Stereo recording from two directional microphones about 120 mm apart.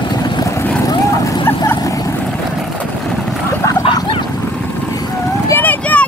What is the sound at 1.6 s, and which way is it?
Vehicle, 30° left (ahead or behind).